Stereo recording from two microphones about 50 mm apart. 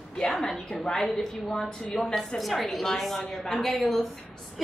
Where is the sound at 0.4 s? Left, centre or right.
Centre.